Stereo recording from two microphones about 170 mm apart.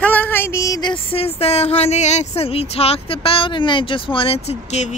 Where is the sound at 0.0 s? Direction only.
10° left (ahead or behind).